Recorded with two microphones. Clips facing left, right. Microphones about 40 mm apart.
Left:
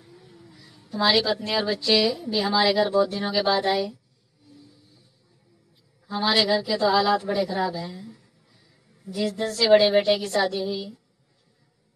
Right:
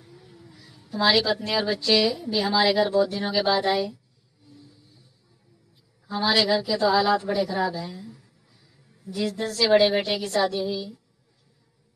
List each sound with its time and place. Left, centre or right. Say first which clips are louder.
0.0 s a woman's voice: even; centre
4.5 s vehicle: even; centre
6.2 s a woman's voice: even; centre
6.8 s speech: even; centre
8.2 s a sound: even; centre
9.4 s speech: left 2 dB; centre